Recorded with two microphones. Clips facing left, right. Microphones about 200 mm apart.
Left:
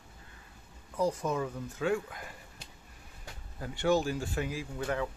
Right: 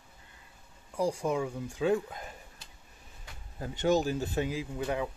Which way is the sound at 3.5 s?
20° right (ahead or behind).